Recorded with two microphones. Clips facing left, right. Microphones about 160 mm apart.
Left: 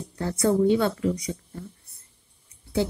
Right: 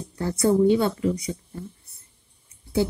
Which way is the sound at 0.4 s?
15° right (ahead or behind).